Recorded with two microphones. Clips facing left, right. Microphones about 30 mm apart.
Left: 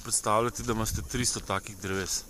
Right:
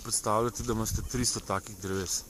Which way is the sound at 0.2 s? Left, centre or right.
Left.